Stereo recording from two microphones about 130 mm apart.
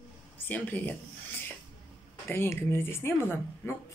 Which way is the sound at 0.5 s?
15° left (ahead or behind).